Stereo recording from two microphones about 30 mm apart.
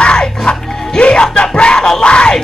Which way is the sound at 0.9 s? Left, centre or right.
Left.